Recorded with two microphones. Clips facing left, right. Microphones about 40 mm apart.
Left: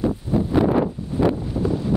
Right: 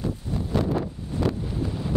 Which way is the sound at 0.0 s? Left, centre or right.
Centre.